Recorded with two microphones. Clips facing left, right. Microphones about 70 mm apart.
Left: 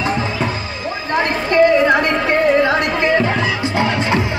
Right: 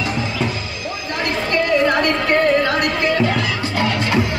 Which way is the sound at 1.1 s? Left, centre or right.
Left.